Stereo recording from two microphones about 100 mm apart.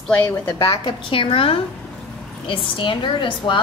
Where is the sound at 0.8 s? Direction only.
60° left (ahead or behind).